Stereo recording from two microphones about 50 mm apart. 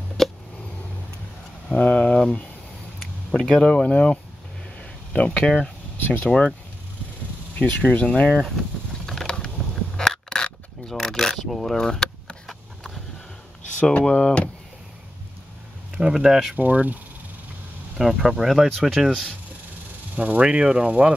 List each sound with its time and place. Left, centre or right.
0.2 s a sound: centre
1.7 s speech: left
4.7 s a sound: left
6.0 s speech: left
7.5 s speech: left
9.0 s mechanisms: centre
9.9 s a sound: centre
14.0 s speech: centre
16.0 s speech: centre
16.5 s speech: right
17.9 s speech: centre
18.7 s speech: centre
20.2 s speech: right